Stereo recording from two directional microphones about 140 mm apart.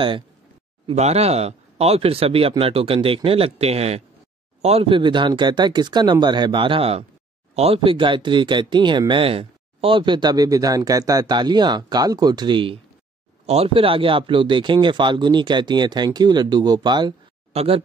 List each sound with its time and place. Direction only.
0.8 s speech: 50° right (ahead or behind); by 17.1 s 30° right (ahead or behind)
17.5 s speech: 45° right (ahead or behind)